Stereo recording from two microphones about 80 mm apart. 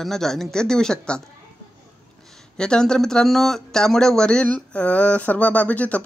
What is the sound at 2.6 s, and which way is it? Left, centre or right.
Speech, centre.